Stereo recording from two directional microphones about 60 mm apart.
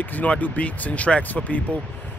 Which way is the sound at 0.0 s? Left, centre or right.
Left.